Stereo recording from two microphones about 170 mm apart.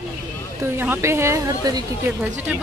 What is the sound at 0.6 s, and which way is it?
A woman's voice, 15° right (ahead or behind).